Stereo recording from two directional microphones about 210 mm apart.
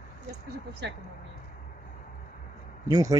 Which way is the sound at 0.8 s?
55° right (ahead or behind).